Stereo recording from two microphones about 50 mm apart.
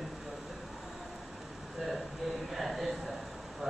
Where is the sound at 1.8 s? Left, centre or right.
Centre.